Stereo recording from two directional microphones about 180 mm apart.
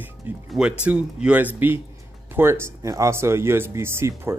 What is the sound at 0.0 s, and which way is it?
Music, 5° right (ahead or behind).